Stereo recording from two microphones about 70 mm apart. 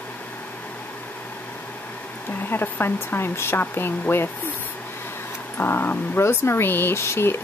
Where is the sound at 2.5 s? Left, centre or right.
Left.